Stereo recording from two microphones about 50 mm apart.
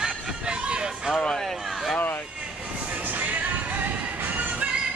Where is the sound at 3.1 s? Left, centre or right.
Right.